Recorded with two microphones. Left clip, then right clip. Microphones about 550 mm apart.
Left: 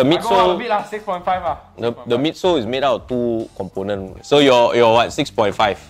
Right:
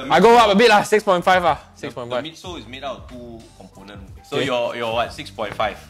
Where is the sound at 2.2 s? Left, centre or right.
Left.